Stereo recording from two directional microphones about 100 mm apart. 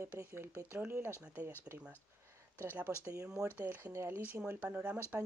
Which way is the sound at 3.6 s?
20° right (ahead or behind).